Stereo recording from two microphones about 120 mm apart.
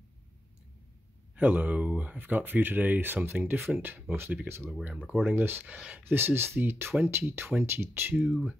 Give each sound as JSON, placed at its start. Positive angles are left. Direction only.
{"t": 1.3, "sound": "speech", "side_deg": -15}